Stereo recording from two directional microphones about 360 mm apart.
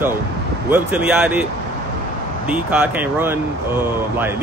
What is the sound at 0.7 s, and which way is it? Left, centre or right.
Speech, centre.